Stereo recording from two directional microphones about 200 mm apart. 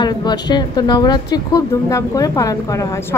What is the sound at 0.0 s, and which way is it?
A woman's voice, 20° left (ahead or behind).